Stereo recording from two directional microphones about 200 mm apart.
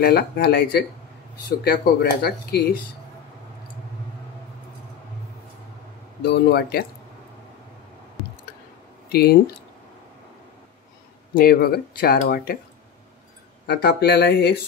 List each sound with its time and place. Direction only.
0.0 s speech: 50° left (ahead or behind)
6.2 s speech: 55° left (ahead or behind)
9.1 s speech: 50° left (ahead or behind)
11.3 s speech: 45° left (ahead or behind)
13.7 s speech: 50° left (ahead or behind)